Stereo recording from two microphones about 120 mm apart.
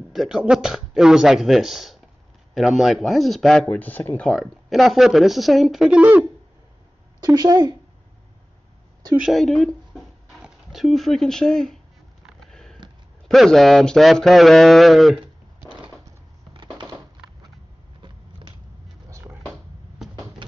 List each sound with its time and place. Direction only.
0.1 s speech: 5° right (ahead or behind)
3.6 s speech: 15° left (ahead or behind)
4.3 s speech: centre (ahead or behind)
7.2 s speech: 30° right (ahead or behind)
9.2 s speech: centre (ahead or behind)
12.4 s sniff: 5° left (ahead or behind)
13.3 s speech: centre (ahead or behind)
19.0 s a sound: 25° right (ahead or behind)
20.0 s vehicle: 5° right (ahead or behind)